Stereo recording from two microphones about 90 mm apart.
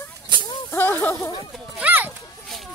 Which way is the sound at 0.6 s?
25° left (ahead or behind).